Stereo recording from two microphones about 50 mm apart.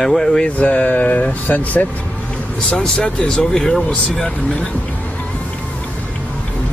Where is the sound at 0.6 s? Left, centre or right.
Left.